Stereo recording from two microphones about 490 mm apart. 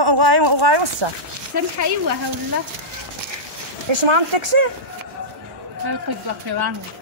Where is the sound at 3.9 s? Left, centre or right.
Right.